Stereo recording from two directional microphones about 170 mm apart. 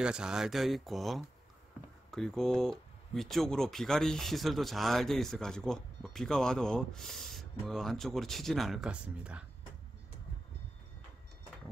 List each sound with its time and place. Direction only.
0.0 s speech: 5° right (ahead or behind)